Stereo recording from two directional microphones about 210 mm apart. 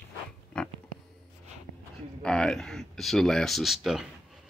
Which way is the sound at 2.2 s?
5° left (ahead or behind).